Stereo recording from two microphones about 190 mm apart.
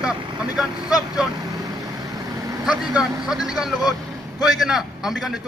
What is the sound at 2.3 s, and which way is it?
Vehicle, 20° right (ahead or behind).